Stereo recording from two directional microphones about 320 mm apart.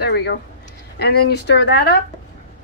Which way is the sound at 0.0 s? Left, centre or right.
Left.